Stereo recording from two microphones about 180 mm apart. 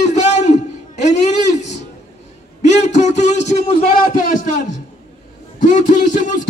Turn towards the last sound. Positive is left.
turn(degrees=45)  # may be behind; listen again after turning